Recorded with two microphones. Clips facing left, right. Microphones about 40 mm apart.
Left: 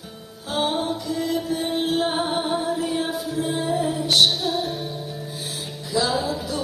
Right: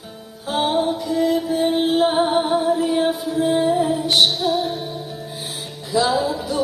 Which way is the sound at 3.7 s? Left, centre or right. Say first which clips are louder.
Right 4 dB; centre.